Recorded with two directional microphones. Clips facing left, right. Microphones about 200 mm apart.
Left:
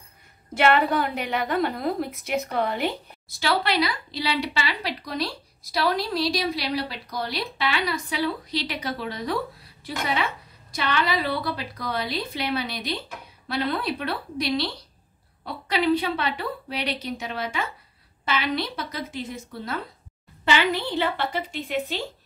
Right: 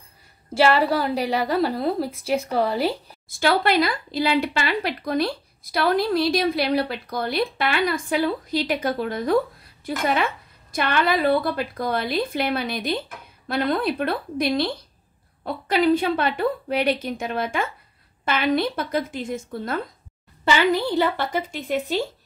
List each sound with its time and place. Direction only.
0.6 s a woman's voice: 30° right (ahead or behind)
3.3 s speech: 50° right (ahead or behind)
20.4 s speech: 40° right (ahead or behind)